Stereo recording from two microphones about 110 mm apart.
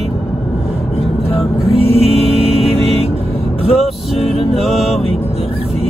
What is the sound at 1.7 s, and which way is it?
Music, 65° right (ahead or behind).